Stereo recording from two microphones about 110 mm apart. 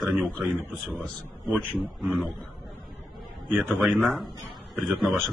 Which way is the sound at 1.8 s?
Centre (ahead or behind).